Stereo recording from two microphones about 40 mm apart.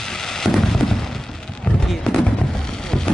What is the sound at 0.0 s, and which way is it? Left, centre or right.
Fireworks, centre.